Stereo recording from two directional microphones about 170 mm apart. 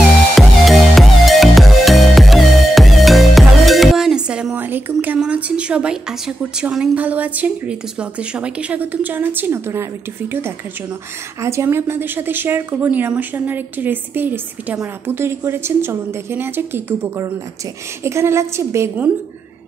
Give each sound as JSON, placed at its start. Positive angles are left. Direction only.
{"t": 0.4, "sound": "music", "side_deg": 0}
{"t": 11.4, "sound": "speech", "side_deg": -15}